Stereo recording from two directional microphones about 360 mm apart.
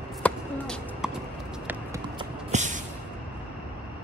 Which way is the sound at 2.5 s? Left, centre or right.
Centre.